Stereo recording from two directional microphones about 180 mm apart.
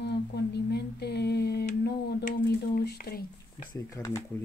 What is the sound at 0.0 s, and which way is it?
Humming, 65° left (ahead or behind).